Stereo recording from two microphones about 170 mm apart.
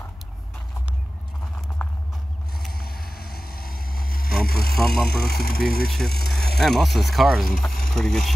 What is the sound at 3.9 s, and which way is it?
Vehicle, 60° left (ahead or behind).